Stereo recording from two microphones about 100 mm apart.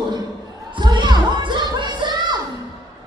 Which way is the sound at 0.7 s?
55° right (ahead or behind).